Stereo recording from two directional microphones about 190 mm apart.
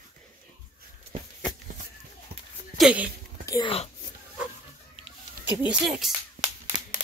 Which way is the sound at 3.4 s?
15° left (ahead or behind).